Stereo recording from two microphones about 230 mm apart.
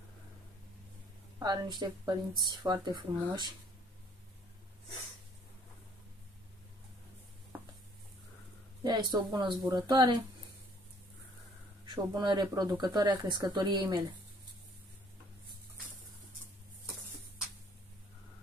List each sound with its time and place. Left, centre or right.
1.4 s speech: centre
8.8 s speech: centre
11.8 s speech: centre